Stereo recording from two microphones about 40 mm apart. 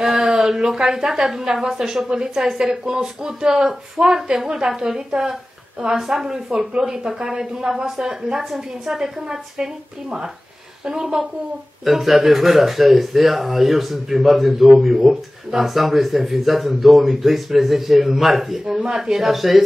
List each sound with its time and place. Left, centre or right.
0.0 s a woman's voice: centre
10.9 s a woman's voice: centre
11.8 s a woman's voice: centre